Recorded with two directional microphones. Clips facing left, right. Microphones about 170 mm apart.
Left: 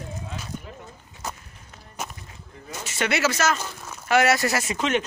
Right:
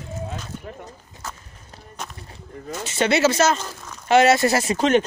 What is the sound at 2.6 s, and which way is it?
Speech, 30° right (ahead or behind).